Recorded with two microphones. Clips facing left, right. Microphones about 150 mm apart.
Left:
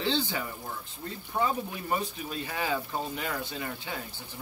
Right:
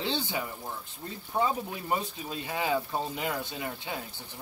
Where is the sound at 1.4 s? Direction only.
20° right (ahead or behind).